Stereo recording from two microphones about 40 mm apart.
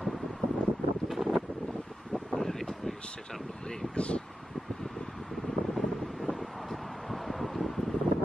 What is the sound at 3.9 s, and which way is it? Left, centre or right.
Speech, left.